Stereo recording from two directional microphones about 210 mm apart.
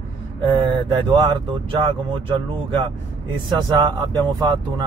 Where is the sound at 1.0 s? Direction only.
20° right (ahead or behind).